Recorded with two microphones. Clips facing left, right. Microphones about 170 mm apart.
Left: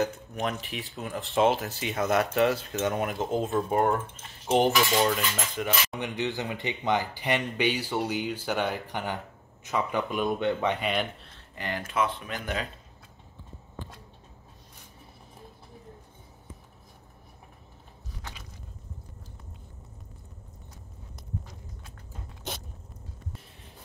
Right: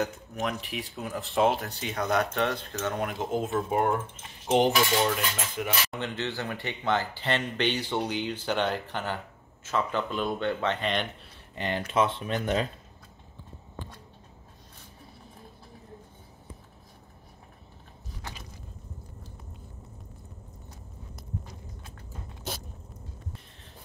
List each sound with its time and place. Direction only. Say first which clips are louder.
0.0 s speech: left 2 dB; centre (ahead or behind)
4.5 s cutlery: even; 15° right (ahead or behind)
5.1 s speech: left 1 dB; 5° right (ahead or behind)
5.9 s speech: left 2 dB; 15° left (ahead or behind)
11.3 s a sound: right 4 dB; 20° right (ahead or behind)
11.9 s speech: right 3 dB; 25° right (ahead or behind)